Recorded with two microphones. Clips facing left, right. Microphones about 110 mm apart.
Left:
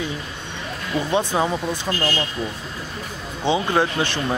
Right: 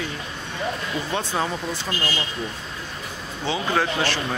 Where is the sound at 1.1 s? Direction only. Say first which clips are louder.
Left 5 dB; 15° left (ahead or behind).